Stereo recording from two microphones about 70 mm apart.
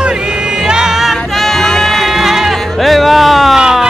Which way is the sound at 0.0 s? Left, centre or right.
Centre.